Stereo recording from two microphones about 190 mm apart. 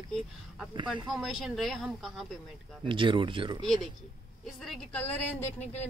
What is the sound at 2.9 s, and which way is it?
Speech, 25° right (ahead or behind).